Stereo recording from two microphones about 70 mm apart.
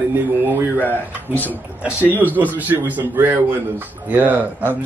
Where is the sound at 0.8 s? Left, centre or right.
Left.